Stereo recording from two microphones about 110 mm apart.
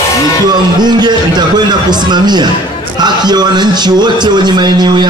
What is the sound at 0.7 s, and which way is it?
Speech, 40° right (ahead or behind).